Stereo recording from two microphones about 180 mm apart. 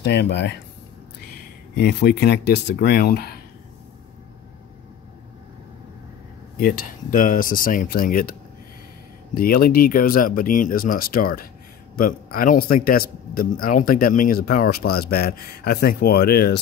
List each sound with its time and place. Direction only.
0.0 s speech: 70° left (ahead or behind)
1.8 s speech: 65° left (ahead or behind)
6.5 s speech: 55° left (ahead or behind)